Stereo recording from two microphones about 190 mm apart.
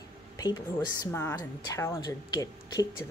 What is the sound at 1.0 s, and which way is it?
A woman's voice, 10° left (ahead or behind).